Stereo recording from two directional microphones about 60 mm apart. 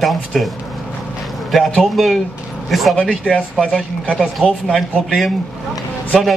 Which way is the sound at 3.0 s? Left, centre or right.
Centre.